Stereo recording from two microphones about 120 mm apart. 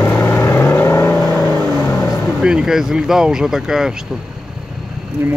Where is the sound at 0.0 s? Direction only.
20° left (ahead or behind).